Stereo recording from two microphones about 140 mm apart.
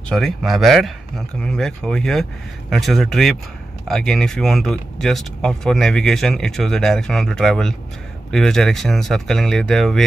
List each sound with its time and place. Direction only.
0.1 s speech: centre (ahead or behind)